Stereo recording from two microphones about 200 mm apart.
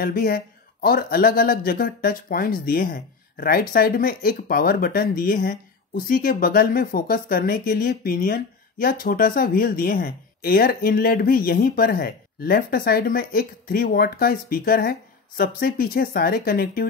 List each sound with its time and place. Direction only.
0.0 s speech: 45° left (ahead or behind)